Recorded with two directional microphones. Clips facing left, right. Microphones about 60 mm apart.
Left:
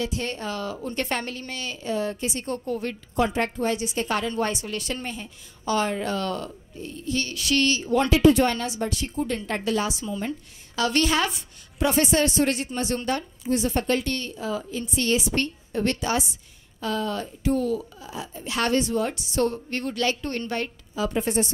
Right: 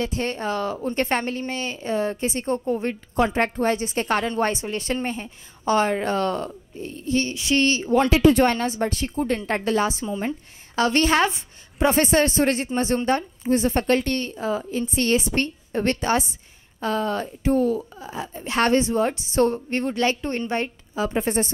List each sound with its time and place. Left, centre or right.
0.0 s a woman's voice: right